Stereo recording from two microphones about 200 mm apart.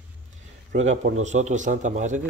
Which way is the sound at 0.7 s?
35° right (ahead or behind).